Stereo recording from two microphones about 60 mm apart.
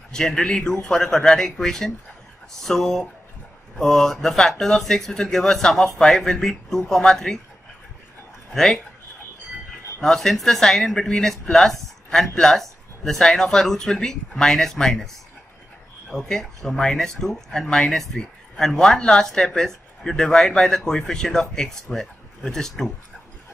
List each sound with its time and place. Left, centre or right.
0.1 s speech: centre
10.0 s speech: centre
16.1 s speech: centre